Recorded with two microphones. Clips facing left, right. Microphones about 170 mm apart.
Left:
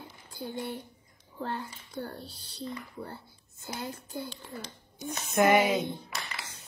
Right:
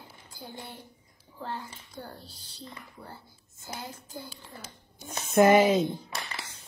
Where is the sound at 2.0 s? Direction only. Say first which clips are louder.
Left 6 dB; 60° left (ahead or behind).